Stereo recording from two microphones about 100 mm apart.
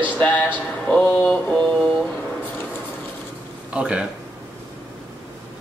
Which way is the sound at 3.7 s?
10° right (ahead or behind).